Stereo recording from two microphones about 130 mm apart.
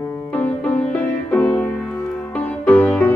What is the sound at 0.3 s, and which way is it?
Music, 10° left (ahead or behind).